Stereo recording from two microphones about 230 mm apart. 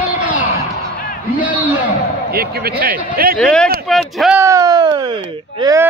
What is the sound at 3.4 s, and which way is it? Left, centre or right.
Speech, centre.